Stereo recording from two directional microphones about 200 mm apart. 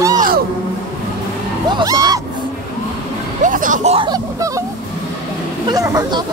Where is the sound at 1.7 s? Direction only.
20° right (ahead or behind).